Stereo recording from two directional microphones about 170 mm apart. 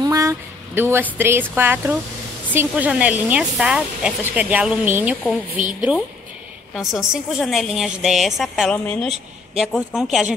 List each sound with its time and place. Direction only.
0.0 s a sound: 20° right (ahead or behind)
1.1 s a woman's voice: 15° right (ahead or behind)
8.7 s speech: 10° left (ahead or behind)
9.6 s a woman's voice: centre (ahead or behind)